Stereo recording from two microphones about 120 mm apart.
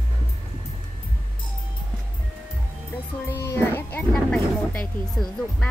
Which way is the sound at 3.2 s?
20° left (ahead or behind).